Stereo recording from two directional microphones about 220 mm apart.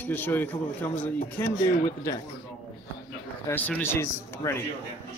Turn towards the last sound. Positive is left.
turn(degrees=10)  # may be behind; listen again after turning